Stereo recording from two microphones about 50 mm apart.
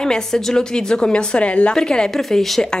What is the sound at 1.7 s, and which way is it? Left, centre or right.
Speech, centre.